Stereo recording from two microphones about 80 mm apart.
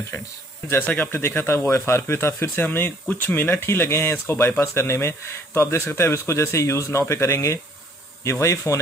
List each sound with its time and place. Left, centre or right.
0.8 s speech: left